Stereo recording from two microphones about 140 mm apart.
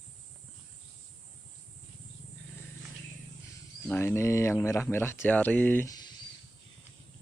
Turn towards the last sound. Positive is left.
turn(degrees=10)  # may be behind; listen again after turning